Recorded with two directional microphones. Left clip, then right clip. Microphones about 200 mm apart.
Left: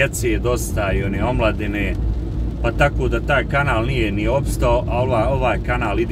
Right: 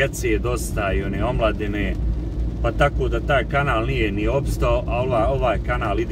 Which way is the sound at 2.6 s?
20° left (ahead or behind).